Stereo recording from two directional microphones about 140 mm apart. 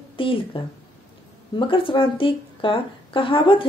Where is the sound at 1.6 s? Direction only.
40° left (ahead or behind).